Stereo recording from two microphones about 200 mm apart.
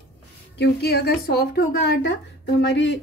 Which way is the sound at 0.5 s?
55° left (ahead or behind).